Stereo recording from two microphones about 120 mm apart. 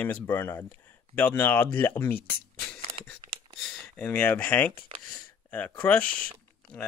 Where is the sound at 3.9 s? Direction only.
15° left (ahead or behind).